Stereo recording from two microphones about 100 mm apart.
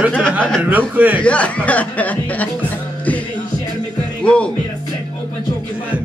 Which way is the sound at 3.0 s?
15° left (ahead or behind).